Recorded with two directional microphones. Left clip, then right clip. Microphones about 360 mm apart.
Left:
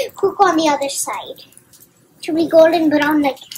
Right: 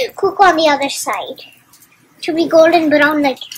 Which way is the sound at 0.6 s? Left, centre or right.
Centre.